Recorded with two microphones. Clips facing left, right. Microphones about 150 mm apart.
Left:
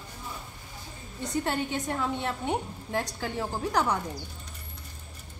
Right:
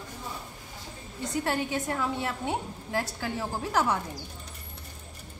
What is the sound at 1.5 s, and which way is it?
A woman's voice, 20° left (ahead or behind).